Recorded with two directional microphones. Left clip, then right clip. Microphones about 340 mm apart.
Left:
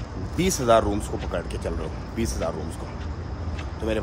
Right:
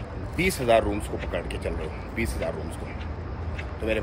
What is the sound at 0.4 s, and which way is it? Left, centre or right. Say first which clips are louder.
Speech: left 2 dB; centre.